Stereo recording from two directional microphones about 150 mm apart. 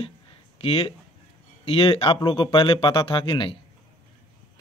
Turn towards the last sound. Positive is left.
turn(degrees=30)  # may be behind; listen again after turning